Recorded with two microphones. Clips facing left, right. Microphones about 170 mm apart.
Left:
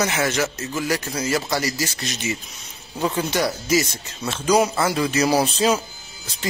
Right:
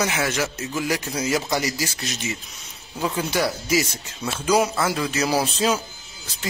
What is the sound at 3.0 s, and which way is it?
A man's voice, 5° right (ahead or behind).